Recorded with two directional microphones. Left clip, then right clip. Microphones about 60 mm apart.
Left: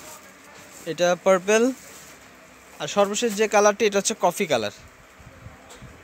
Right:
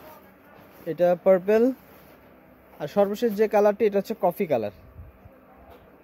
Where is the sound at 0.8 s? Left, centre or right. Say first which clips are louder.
Even; right.